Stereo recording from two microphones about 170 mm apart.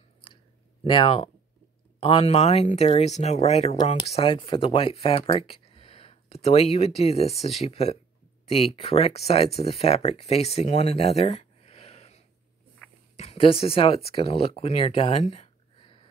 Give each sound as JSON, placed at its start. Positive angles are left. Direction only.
{"t": 0.8, "sound": "speech", "side_deg": 30}